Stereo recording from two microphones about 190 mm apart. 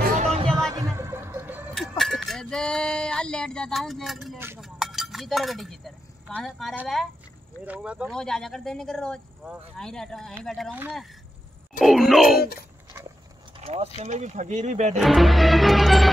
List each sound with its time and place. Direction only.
0.2 s music: 30° right (ahead or behind)
0.7 s a sound: 15° right (ahead or behind)
1.7 s music: centre (ahead or behind)
4.6 s speech: centre (ahead or behind)
10.7 s speech: 10° right (ahead or behind)
13.6 s speech: 35° right (ahead or behind)
15.0 s speech: centre (ahead or behind)